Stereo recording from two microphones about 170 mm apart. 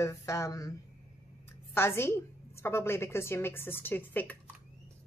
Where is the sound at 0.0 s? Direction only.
15° left (ahead or behind).